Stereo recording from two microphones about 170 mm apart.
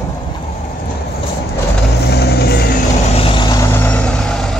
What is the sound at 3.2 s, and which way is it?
Vehicle, 30° left (ahead or behind).